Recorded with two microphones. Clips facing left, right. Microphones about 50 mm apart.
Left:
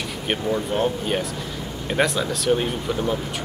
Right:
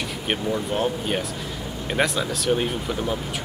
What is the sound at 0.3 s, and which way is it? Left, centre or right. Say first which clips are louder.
Speech: left 2 dB; centre.